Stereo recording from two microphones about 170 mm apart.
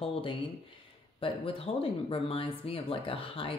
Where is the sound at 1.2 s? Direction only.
30° left (ahead or behind).